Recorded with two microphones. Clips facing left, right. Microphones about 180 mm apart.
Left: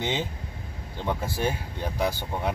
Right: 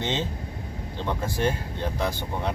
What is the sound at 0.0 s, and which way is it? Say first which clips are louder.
Speech: right 1 dB; 10° left (ahead or behind).